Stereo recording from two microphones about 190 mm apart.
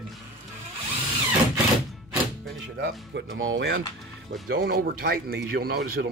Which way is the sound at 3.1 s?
80° right.